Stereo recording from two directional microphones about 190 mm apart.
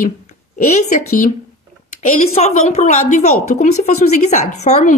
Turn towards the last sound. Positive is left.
turn(degrees=40)  # may be behind; listen again after turning